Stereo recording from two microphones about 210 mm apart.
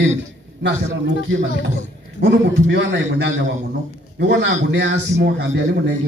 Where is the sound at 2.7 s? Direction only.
60° right (ahead or behind).